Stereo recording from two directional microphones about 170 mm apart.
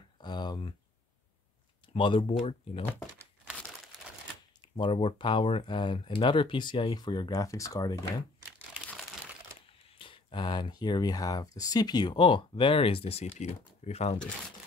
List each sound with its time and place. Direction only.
0.2 s a sound: 25° left (ahead or behind)
2.0 s speech: 30° left (ahead or behind)
4.6 s speech: 25° left (ahead or behind)
9.9 s speech: 30° left (ahead or behind)